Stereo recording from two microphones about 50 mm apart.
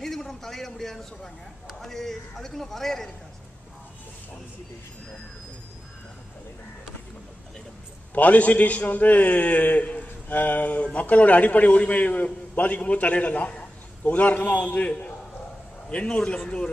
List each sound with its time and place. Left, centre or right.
0.0 s a man's voice: centre
8.1 s a man's voice: left